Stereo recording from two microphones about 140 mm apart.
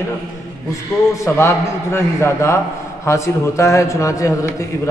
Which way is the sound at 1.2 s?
20° left (ahead or behind).